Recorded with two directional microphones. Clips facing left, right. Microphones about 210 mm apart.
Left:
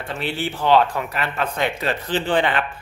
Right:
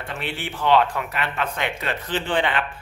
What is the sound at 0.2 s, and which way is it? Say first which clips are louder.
A man's voice: left 3 dB; 35° left (ahead or behind).